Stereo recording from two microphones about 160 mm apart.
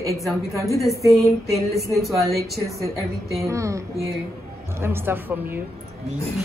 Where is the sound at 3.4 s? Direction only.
20° right (ahead or behind).